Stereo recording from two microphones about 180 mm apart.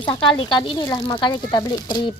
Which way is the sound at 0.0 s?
30° left (ahead or behind).